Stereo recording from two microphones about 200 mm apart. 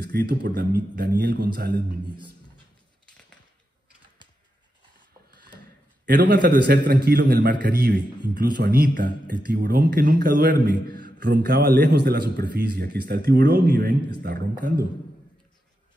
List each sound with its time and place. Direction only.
0.0 s a man's voice: 55° right (ahead or behind)
6.0 s a man's voice: 50° right (ahead or behind)